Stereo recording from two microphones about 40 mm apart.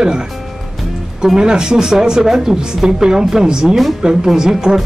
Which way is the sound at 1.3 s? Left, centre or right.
Centre.